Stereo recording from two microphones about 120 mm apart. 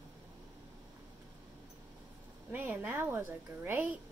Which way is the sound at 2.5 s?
15° right (ahead or behind).